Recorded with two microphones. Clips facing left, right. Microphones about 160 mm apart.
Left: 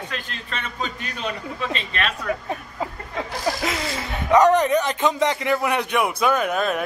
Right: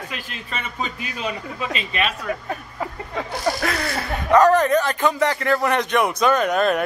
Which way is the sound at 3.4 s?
15° left (ahead or behind).